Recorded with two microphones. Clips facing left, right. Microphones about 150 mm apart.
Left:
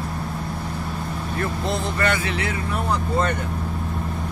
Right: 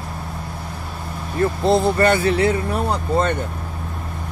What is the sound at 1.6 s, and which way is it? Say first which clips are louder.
Speech: right 9 dB; 35° right (ahead or behind).